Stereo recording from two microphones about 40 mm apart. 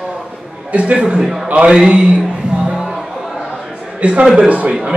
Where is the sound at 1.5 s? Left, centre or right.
Right.